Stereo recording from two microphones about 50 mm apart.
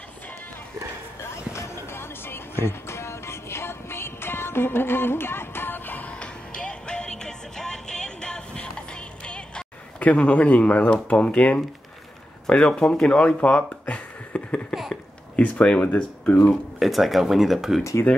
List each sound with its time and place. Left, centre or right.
1.3 s music: left
6.1 s music: centre
10.0 s speech: left
13.4 s a sound: left
15.8 s speech: left
16.8 s speech: centre